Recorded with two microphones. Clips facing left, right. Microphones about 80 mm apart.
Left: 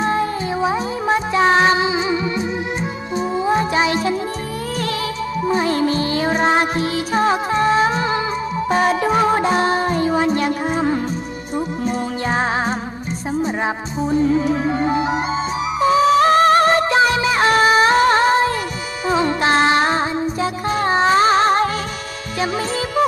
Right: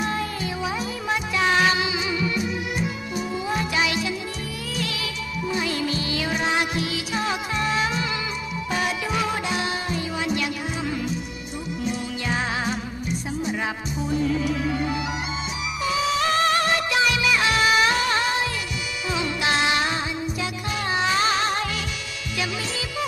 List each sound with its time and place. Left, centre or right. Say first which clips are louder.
0.0 s music: left 7 dB; left
5.5 s music: left 8 dB; left
14.0 s music: left 7 dB; left